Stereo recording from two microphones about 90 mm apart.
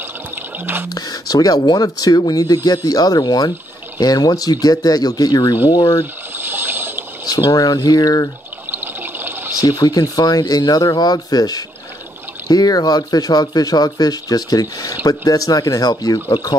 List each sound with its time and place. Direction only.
0.8 s speech: 45° left (ahead or behind)
6.3 s a sound: 25° right (ahead or behind)
7.2 s speech: 50° left (ahead or behind)
8.7 s water: 20° right (ahead or behind)
9.6 s speech: 45° left (ahead or behind)